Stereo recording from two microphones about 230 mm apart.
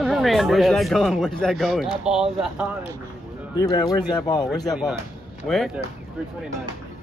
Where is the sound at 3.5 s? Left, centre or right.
Centre.